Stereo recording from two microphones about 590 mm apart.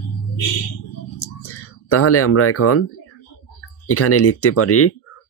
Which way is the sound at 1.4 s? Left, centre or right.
Left.